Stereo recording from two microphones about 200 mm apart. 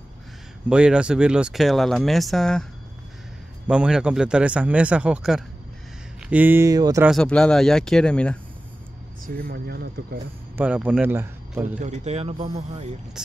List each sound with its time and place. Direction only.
0.7 s speech: 5° right (ahead or behind)
3.6 s a man's voice: 5° right (ahead or behind)
7.1 s speech: 5° left (ahead or behind)
9.2 s speech: 50° right (ahead or behind)
10.6 s a man's voice: 5° right (ahead or behind)
11.8 s speech: 35° right (ahead or behind)